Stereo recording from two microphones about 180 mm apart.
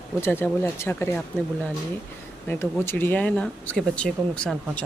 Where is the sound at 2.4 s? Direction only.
10° left (ahead or behind).